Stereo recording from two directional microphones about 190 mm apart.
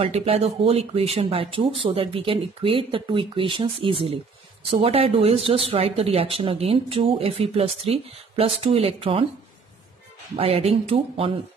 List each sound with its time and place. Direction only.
0.0 s speech: 30° right (ahead or behind)
10.3 s speech: 30° right (ahead or behind)